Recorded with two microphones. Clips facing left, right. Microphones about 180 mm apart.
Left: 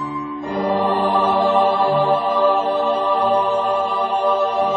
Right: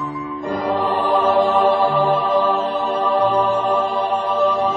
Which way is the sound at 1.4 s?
35° left (ahead or behind).